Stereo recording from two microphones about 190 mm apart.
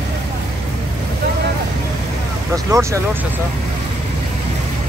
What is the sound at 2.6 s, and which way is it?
Speech, 15° right (ahead or behind).